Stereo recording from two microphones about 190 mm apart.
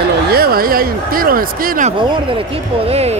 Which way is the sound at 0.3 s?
55° right (ahead or behind).